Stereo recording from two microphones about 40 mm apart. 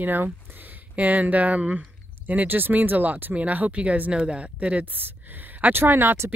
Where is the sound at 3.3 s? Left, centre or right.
Right.